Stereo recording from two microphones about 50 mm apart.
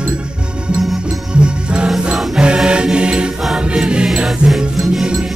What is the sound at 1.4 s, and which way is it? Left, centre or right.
Music, centre.